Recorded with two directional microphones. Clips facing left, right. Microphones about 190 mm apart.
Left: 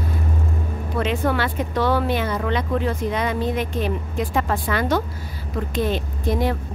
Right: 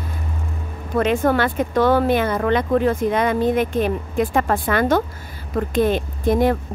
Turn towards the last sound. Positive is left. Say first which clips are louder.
# right 5 dB
turn(degrees=-50)  # may be behind; listen again after turning